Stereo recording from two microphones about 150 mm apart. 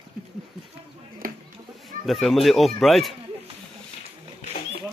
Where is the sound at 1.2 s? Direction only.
75° right (ahead or behind).